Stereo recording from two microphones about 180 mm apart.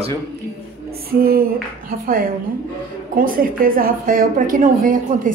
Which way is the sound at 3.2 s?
50° right (ahead or behind).